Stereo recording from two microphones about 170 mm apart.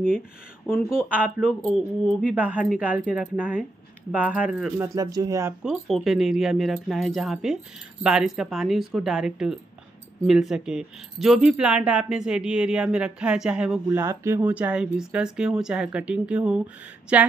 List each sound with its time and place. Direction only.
0.7 s speech: centre (ahead or behind)
4.8 s speech: 20° right (ahead or behind)
5.6 s speech: centre (ahead or behind)